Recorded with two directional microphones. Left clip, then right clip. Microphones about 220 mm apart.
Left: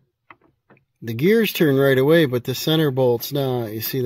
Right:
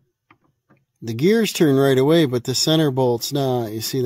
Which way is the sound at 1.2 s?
20° right (ahead or behind).